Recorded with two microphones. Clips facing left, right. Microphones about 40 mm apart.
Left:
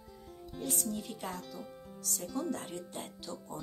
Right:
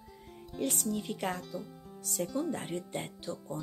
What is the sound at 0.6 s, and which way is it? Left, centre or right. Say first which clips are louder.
Speech: right 4 dB; right.